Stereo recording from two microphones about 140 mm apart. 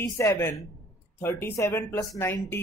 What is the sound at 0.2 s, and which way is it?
Speech, 20° left (ahead or behind).